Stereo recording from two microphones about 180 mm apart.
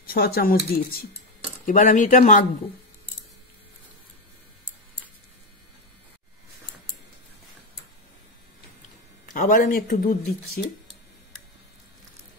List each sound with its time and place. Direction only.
0.0 s speech: 55° left (ahead or behind)
9.2 s speech: 50° left (ahead or behind)